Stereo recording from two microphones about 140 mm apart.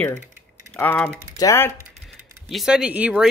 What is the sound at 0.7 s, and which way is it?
Speech, 10° left (ahead or behind).